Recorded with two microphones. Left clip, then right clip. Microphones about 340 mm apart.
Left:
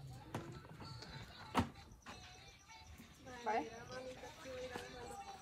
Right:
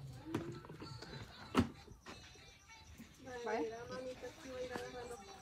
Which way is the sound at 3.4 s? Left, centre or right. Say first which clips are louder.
Even; centre.